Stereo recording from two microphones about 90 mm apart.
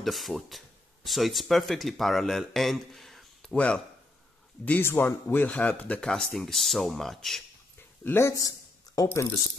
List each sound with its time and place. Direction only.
0.0 s speech: centre (ahead or behind)
3.5 s speech: 10° left (ahead or behind)
8.0 s speech: 30° left (ahead or behind)